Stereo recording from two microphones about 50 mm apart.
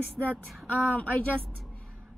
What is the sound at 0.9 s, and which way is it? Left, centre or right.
Speech, left.